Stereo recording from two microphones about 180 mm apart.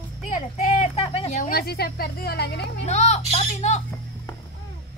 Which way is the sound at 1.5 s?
60° left (ahead or behind).